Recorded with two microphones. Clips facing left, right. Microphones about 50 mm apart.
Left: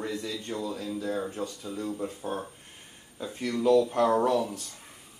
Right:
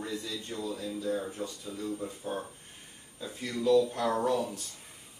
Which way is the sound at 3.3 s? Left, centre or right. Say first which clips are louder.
Left 3 dB; left.